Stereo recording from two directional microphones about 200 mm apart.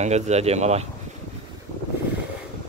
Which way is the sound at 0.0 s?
35° right (ahead or behind).